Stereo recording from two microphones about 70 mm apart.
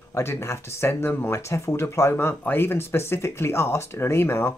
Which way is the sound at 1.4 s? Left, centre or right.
Left.